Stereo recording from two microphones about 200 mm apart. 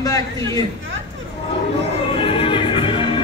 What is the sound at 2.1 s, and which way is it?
Music, 25° left (ahead or behind).